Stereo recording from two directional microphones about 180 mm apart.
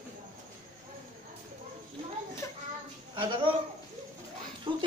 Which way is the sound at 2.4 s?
15° left (ahead or behind).